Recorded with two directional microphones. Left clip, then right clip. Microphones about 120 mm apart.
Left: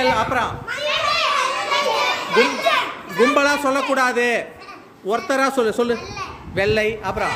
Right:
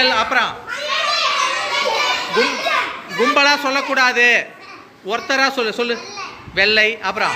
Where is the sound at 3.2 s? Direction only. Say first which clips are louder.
Right 2 dB; 40° left (ahead or behind).